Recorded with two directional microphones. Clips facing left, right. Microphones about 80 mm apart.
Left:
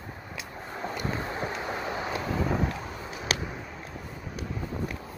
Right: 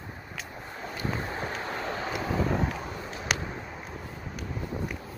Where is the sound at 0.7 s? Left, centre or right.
Centre.